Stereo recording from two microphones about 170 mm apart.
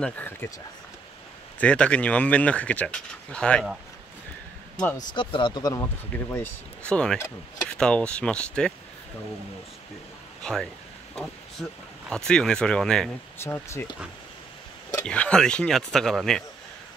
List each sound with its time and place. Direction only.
0.0 s speech: 10° left (ahead or behind)
1.6 s speech: 5° left (ahead or behind)
4.9 s speech: 30° left (ahead or behind)
6.3 s speech: 10° left (ahead or behind)
10.4 s speech: 5° left (ahead or behind)
12.1 s speech: 5° left (ahead or behind)
13.4 s speech: 15° left (ahead or behind)
15.0 s speech: 5° left (ahead or behind)